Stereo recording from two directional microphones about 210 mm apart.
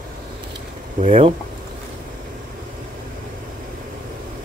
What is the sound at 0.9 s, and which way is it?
Speech, 25° right (ahead or behind).